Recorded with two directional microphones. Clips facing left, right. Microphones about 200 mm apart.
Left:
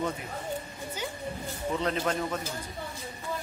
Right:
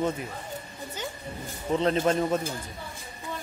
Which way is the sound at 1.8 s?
25° right (ahead or behind).